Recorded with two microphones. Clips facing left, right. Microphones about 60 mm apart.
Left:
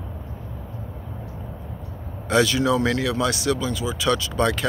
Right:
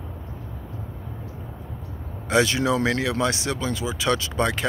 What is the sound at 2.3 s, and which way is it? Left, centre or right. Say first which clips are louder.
Speech: left 1 dB; right.